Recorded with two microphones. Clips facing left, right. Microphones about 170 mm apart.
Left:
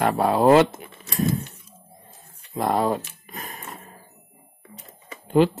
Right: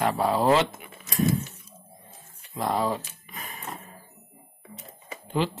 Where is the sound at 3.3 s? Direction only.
40° left (ahead or behind).